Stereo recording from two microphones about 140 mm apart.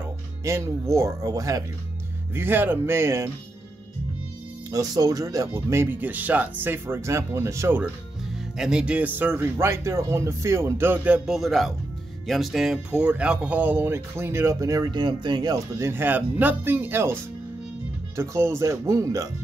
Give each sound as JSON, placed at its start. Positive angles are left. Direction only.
{"t": 0.4, "sound": "speech", "side_deg": -20}
{"t": 2.3, "sound": "speech", "side_deg": -15}
{"t": 4.6, "sound": "speech", "side_deg": -25}
{"t": 8.5, "sound": "speech", "side_deg": -5}
{"t": 11.2, "sound": "speech", "side_deg": 0}